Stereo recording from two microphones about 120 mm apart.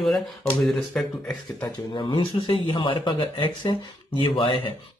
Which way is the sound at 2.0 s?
45° left (ahead or behind).